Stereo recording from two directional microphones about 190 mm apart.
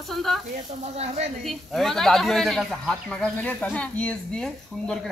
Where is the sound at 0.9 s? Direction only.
35° right (ahead or behind).